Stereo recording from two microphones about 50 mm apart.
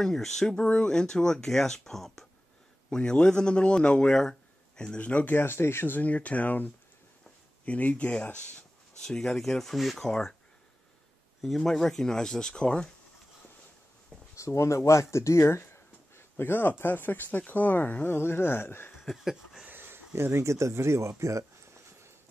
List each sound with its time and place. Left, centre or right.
0.0 s speech: centre
2.9 s speech: centre
5.3 s a sound: left
5.9 s speech: left
9.0 s speech: centre
11.4 s speech: centre
14.3 s speech: left
14.8 s speech: left
18.1 s a sound: left
19.1 s a sound: centre
19.7 s a sound: right
20.2 s speech: right